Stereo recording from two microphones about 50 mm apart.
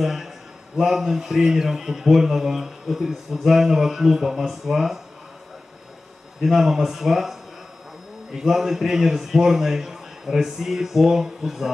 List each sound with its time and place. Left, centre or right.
0.0 s a man's voice: centre
6.4 s a man's voice: centre